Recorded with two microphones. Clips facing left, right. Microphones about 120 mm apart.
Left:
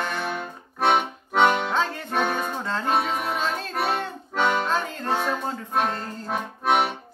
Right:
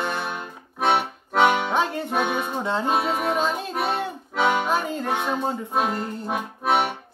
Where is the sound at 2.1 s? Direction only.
5° right (ahead or behind).